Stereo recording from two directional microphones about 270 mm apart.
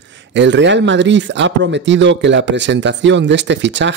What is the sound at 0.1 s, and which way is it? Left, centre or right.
Speech, right.